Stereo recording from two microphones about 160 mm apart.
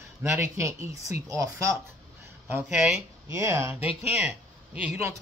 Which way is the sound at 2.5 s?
10° right (ahead or behind).